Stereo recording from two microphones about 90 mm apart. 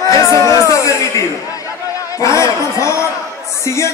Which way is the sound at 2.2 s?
35° left (ahead or behind).